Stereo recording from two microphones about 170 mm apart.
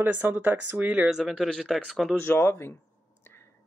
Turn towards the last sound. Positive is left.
turn(degrees=15)  # may be behind; listen again after turning